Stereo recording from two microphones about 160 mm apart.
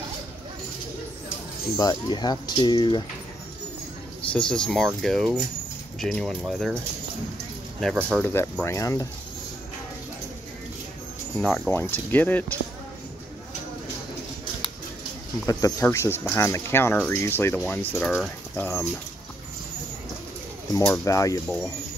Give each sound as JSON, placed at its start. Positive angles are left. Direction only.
{"t": 1.8, "sound": "speech", "side_deg": 25}
{"t": 4.3, "sound": "speech", "side_deg": 5}
{"t": 8.2, "sound": "speech", "side_deg": 10}
{"t": 11.3, "sound": "speech", "side_deg": 5}
{"t": 15.4, "sound": "speech", "side_deg": 20}
{"t": 20.7, "sound": "speech", "side_deg": 15}